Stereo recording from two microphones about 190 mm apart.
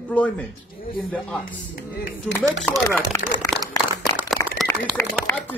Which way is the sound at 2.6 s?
10° left (ahead or behind).